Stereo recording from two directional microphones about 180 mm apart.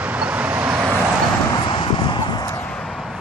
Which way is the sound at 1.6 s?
25° left (ahead or behind).